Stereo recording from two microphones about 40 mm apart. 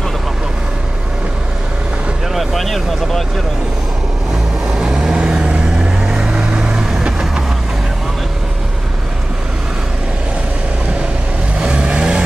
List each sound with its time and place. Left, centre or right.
2.3 s speech: centre
4.6 s vehicle: centre
7.0 s train: centre
11.6 s vehicle: right